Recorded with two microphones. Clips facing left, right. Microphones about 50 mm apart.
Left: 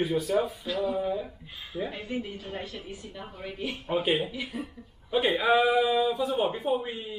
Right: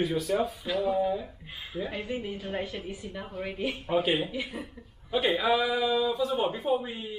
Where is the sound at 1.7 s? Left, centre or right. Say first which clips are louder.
Left 1 dB; right.